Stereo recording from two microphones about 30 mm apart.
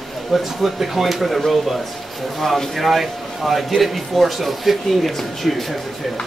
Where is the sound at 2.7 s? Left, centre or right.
Centre.